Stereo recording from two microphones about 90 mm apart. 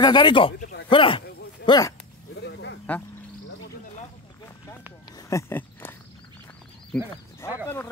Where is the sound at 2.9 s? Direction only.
15° left (ahead or behind).